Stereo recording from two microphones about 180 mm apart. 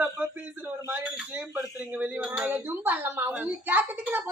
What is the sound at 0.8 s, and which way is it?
Speech, 10° right (ahead or behind).